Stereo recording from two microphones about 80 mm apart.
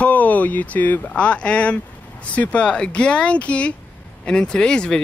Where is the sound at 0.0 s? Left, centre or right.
Centre.